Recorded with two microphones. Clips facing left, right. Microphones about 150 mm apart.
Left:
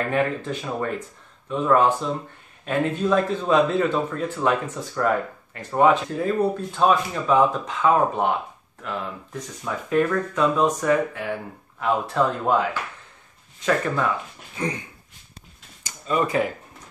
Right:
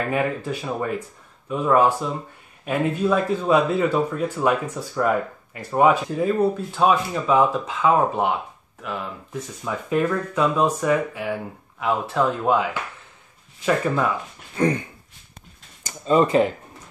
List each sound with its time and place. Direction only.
0.1 s speech: 10° right (ahead or behind)
9.8 s speech: 10° right (ahead or behind)
14.6 s dog: 55° right (ahead or behind)
16.1 s speech: 25° right (ahead or behind)